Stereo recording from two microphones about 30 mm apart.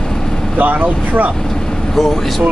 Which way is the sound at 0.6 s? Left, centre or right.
Right.